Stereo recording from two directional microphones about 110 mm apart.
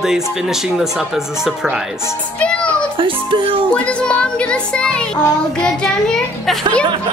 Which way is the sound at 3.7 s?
10° left (ahead or behind).